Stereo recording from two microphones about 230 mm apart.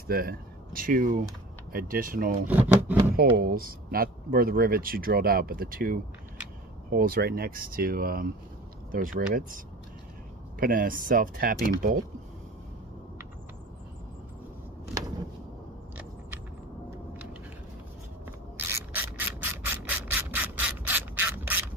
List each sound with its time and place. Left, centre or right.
0.1 s speech: right
2.4 s speech: centre
3.2 s speech: right
10.6 s speech: right
14.9 s a sound: centre
18.6 s a sound: centre